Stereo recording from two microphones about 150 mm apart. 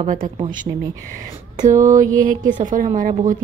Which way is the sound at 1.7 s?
20° right (ahead or behind).